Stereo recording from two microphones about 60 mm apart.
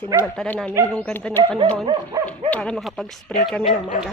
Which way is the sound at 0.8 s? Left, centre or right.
Right.